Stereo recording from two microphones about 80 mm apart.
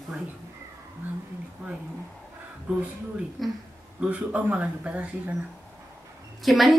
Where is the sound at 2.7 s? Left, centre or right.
Centre.